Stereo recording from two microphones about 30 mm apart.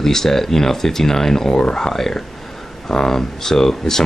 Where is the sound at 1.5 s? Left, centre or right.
Left.